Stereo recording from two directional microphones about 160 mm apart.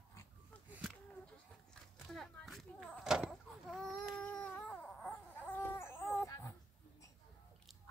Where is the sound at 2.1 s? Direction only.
Centre (ahead or behind).